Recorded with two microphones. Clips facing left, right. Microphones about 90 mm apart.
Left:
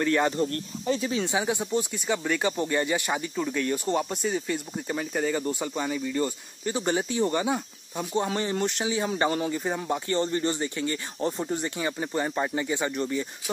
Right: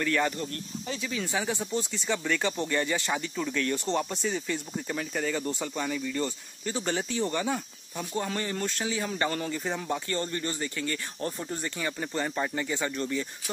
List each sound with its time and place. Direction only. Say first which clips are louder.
0.0 s speech: left 4 dB; 20° left (ahead or behind)
0.5 s speech: left 7 dB; 40° left (ahead or behind)
1.1 s speech: left 4 dB; 20° left (ahead or behind)